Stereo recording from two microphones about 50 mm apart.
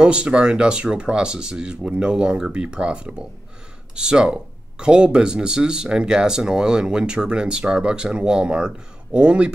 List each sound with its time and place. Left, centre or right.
0.0 s speech: right